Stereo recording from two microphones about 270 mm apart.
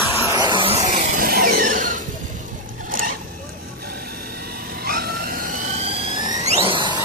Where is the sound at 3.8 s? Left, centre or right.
Right.